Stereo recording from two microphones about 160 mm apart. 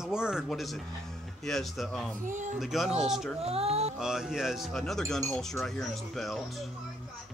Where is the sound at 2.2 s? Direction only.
55° right (ahead or behind).